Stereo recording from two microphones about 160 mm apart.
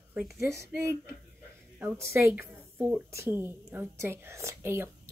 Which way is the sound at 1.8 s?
15° right (ahead or behind).